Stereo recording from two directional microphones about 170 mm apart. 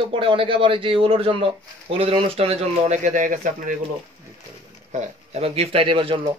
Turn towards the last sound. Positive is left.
turn(degrees=-30)  # may be behind; listen again after turning